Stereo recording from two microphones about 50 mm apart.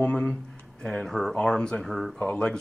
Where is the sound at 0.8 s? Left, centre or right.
Centre.